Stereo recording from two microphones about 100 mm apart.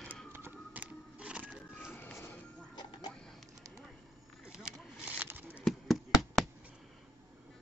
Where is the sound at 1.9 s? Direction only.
20° left (ahead or behind).